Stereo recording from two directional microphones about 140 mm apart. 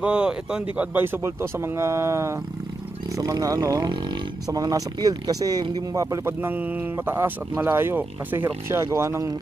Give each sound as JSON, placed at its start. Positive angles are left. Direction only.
{"t": 0.0, "sound": "speech", "side_deg": -5}